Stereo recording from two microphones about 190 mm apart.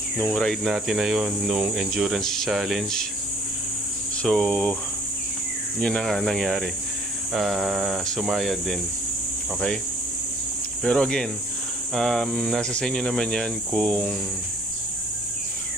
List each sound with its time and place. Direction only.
0.3 s speech: centre (ahead or behind)
4.2 s speech: centre (ahead or behind)
5.8 s speech: 5° left (ahead or behind)
10.8 s speech: 5° left (ahead or behind)